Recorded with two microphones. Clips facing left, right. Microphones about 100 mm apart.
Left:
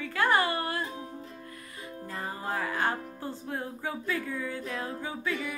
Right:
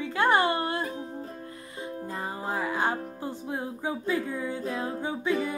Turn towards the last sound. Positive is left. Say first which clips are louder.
# right 5 dB
turn(degrees=-20)  # may be behind; listen again after turning